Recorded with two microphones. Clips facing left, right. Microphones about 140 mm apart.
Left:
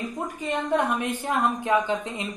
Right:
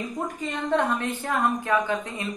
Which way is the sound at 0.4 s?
15° left (ahead or behind).